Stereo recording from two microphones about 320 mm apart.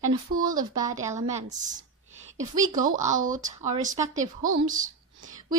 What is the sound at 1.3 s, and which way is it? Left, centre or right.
Speech, right.